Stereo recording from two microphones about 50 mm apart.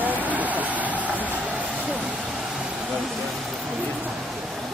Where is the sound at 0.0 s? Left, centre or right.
Right.